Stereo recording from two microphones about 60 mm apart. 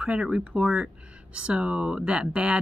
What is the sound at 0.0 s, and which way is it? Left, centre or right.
Speech, centre.